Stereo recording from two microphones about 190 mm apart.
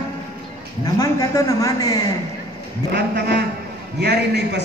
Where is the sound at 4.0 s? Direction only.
60° right (ahead or behind).